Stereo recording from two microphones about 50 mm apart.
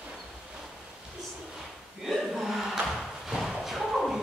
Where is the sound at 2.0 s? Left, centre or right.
Centre.